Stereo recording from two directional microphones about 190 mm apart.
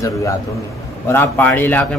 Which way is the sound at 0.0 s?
15° left (ahead or behind).